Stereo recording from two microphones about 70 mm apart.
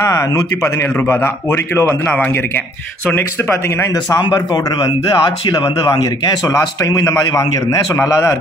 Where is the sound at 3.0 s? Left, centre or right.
Left.